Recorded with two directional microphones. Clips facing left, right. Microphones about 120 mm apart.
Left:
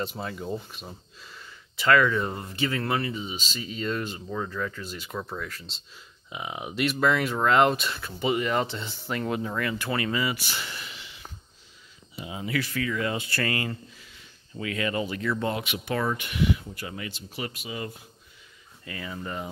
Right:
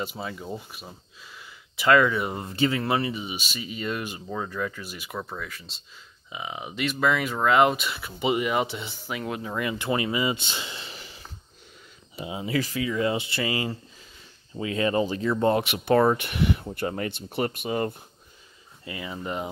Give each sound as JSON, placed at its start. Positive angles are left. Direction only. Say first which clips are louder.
{"t": 0.0, "sound": "speech", "louder": "left 1 dB", "side_deg": -5}
{"t": 1.8, "sound": "speech", "louder": "right 2 dB", "side_deg": -15}
{"t": 9.5, "sound": "speech", "louder": "right 2 dB", "side_deg": -20}
{"t": 10.9, "sound": "a sound", "louder": "right 2 dB", "side_deg": -40}
{"t": 12.2, "sound": "speech", "louder": "right 3 dB", "side_deg": -25}
{"t": 12.8, "sound": "speech", "louder": "right 3 dB", "side_deg": -20}
{"t": 15.9, "sound": "speech", "louder": "right 9 dB", "side_deg": -50}
{"t": 18.9, "sound": "speech", "louder": "right 3 dB", "side_deg": -15}